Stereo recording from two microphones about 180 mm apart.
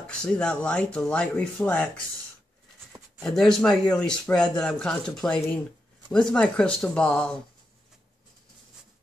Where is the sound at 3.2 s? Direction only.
Centre (ahead or behind).